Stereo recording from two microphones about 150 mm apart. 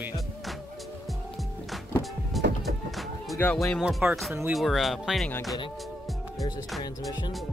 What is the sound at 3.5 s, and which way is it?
Speech, 5° left (ahead or behind).